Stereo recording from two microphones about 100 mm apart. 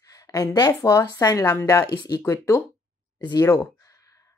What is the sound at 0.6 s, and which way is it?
Speech, 40° left (ahead or behind).